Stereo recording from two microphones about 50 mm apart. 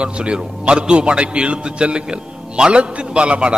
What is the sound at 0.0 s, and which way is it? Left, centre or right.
A man's voice, right.